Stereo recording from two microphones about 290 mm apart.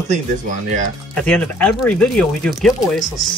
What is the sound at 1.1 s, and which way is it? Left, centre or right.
Speech, centre.